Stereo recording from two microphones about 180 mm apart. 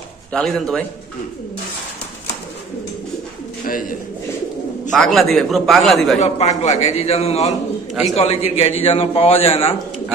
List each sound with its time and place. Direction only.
0.3 s a man's voice: 5° left (ahead or behind)
4.9 s a man's voice: centre (ahead or behind)
6.1 s a man's voice: 40° left (ahead or behind)